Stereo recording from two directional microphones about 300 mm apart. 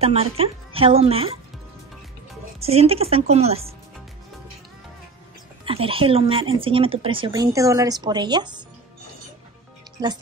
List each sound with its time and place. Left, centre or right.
0.0 s speech: centre
2.6 s speech: centre
5.7 s speech: centre
10.0 s speech: centre